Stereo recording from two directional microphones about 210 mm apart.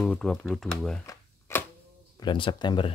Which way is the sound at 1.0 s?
15° left (ahead or behind).